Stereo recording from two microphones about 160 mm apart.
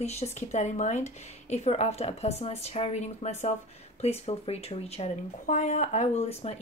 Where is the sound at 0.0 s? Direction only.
40° left (ahead or behind).